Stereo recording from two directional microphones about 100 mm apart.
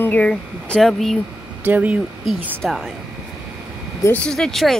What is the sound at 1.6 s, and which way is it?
Speech, 15° right (ahead or behind).